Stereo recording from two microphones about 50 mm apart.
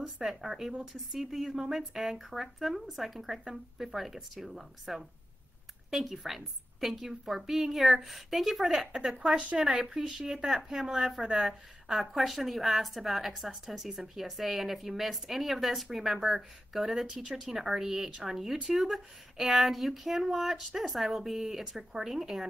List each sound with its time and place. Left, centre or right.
0.2 s a woman's voice: centre